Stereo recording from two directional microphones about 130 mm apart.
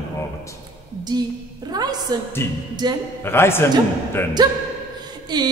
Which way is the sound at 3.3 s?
20° left (ahead or behind).